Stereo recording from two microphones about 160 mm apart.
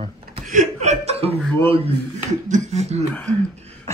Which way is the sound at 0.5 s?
50° right (ahead or behind).